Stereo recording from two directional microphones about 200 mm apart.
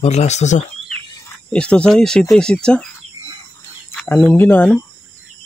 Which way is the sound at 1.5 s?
5° left (ahead or behind).